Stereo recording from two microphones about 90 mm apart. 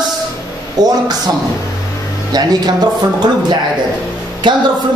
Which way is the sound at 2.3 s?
45° right (ahead or behind).